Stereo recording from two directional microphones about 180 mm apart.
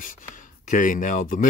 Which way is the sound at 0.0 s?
45° left (ahead or behind).